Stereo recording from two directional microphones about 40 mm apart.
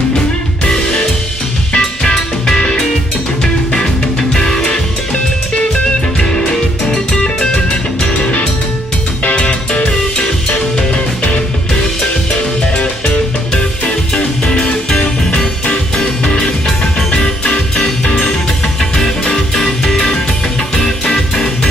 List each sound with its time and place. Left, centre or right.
1.7 s music: centre
6.1 s music: centre
9.4 s music: left
12.8 s music: left
18.8 s music: centre